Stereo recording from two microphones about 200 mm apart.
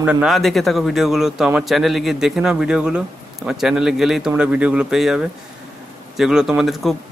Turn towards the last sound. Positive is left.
turn(degrees=0)  # may be behind; listen again after turning